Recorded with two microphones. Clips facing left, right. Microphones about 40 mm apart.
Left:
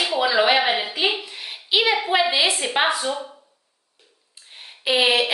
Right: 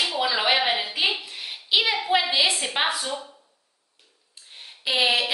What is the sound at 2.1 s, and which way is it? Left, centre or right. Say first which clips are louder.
A woman's voice: left 2 dB; centre.